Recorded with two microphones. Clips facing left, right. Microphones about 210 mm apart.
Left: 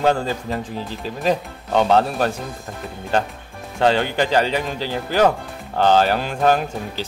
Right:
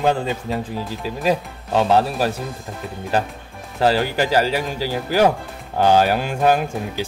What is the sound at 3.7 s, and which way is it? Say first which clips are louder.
A man's voice: even; 5° right (ahead or behind).